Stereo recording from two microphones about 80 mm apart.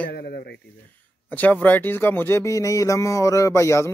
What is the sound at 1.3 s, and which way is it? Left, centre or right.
Speech, left.